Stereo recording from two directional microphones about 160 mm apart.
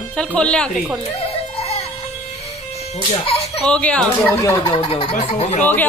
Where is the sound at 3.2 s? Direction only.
40° left (ahead or behind).